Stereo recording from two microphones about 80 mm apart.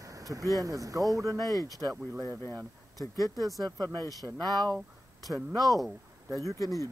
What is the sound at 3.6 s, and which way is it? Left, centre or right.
Speech, right.